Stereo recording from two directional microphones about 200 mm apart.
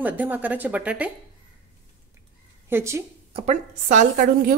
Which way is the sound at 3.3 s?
30° right (ahead or behind).